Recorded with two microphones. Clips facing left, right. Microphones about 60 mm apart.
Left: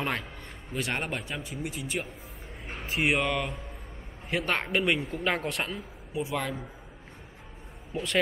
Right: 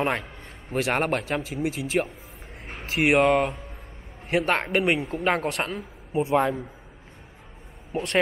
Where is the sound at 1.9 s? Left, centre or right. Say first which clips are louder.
Right 10 dB; right.